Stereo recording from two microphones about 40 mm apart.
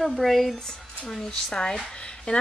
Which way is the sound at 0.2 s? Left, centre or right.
Centre.